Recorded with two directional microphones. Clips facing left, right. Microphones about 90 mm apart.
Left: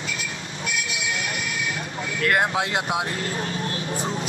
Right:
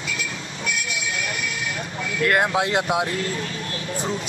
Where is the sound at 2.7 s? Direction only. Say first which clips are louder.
Right 3 dB; centre (ahead or behind).